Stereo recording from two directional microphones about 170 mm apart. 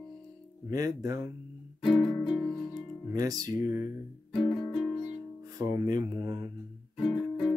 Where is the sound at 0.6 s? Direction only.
20° right (ahead or behind).